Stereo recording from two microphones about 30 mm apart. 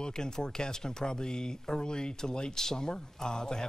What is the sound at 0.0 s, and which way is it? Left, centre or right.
Speech, left.